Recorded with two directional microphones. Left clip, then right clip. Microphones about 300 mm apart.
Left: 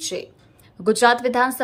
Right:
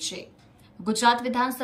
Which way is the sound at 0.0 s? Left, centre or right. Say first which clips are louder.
Left 6 dB; centre.